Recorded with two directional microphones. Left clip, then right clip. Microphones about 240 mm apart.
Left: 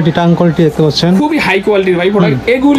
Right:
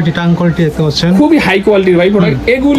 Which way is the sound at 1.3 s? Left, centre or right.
Centre.